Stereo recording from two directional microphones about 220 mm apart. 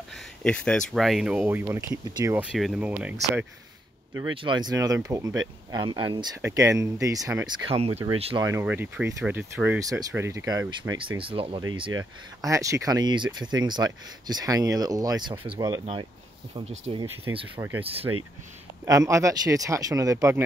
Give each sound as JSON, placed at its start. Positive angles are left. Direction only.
{"t": 0.4, "sound": "speech", "side_deg": 5}
{"t": 2.5, "sound": "speech", "side_deg": 0}
{"t": 4.2, "sound": "speech", "side_deg": -20}
{"t": 7.7, "sound": "speech", "side_deg": -25}
{"t": 8.5, "sound": "speech", "side_deg": -10}
{"t": 12.4, "sound": "speech", "side_deg": -15}
{"t": 17.6, "sound": "speech", "side_deg": -10}
{"t": 17.8, "sound": "speech", "side_deg": -25}
{"t": 18.9, "sound": "speech", "side_deg": -15}